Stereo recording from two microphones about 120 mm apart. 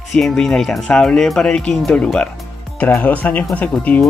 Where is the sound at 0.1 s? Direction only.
5° left (ahead or behind).